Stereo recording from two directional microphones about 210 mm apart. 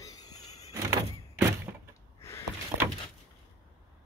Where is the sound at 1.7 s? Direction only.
15° right (ahead or behind).